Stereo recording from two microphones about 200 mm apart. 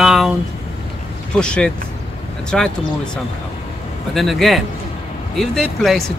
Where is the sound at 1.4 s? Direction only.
5° left (ahead or behind).